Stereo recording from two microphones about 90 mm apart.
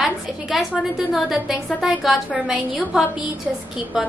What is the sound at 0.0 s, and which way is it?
A woman's voice, centre (ahead or behind).